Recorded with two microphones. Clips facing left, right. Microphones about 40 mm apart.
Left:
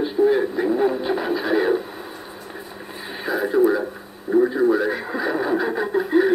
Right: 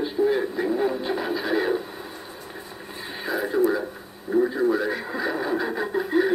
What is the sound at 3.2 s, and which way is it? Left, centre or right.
Speech, centre.